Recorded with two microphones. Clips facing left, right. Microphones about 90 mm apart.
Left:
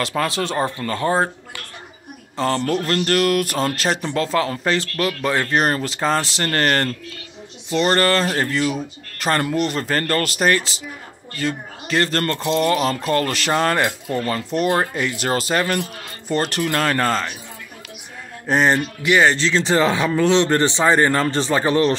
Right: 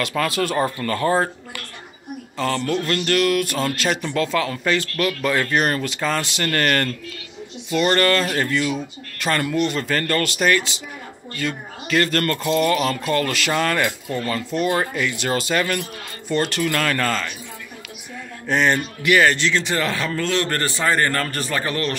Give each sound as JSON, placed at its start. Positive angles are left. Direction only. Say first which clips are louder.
{"t": 0.0, "sound": "speech", "louder": "even", "side_deg": 25}
{"t": 2.3, "sound": "speech", "louder": "left 2 dB", "side_deg": 35}
{"t": 18.5, "sound": "speech", "louder": "left 2 dB", "side_deg": 30}